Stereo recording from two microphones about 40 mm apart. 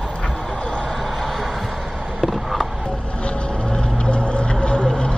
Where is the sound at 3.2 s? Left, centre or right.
Left.